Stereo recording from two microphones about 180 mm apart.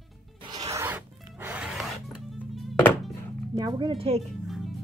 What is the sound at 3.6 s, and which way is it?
Speech, 25° right (ahead or behind).